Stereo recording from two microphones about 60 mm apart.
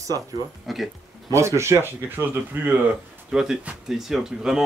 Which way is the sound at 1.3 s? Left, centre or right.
Right.